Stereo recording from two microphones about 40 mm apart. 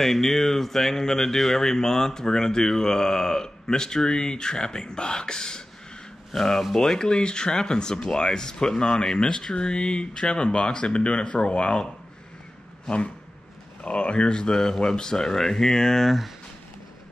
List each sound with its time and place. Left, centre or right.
0.0 s speech: centre; by 11.8 s left
13.8 s speech: left; by 16.1 s centre